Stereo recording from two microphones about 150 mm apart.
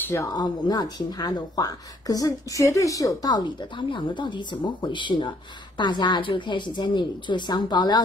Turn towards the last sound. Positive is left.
turn(degrees=30)  # may be behind; listen again after turning